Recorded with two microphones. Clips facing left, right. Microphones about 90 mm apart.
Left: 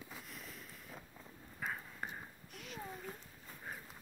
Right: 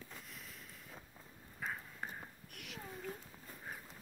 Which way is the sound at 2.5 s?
75° right (ahead or behind).